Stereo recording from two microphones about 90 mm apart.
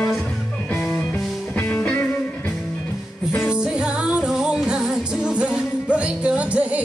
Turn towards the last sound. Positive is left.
turn(degrees=-15)  # may be behind; listen again after turning